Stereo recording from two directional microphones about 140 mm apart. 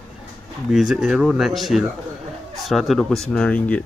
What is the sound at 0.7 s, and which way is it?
Speech, 5° right (ahead or behind).